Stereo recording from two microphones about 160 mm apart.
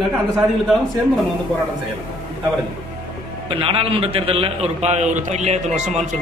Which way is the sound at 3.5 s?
35° right (ahead or behind).